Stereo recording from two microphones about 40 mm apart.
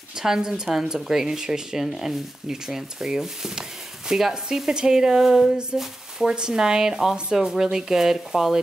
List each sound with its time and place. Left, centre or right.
0.2 s speech: centre